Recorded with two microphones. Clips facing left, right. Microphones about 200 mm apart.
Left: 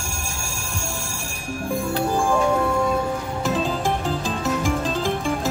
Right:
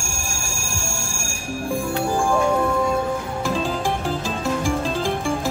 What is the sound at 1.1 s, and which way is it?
Music, 15° left (ahead or behind).